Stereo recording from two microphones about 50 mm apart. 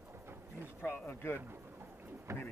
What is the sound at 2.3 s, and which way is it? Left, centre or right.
Speech, right.